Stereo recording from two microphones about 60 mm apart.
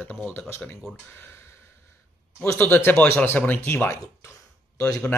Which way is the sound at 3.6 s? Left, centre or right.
Left.